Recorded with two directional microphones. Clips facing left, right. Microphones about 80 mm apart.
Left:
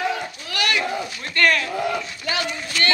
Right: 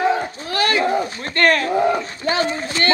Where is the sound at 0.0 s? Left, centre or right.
Right.